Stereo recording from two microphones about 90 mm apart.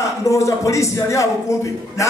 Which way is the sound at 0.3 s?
35° left (ahead or behind).